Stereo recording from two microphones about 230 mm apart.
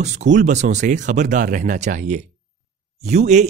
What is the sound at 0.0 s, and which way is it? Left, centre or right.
Speech, right.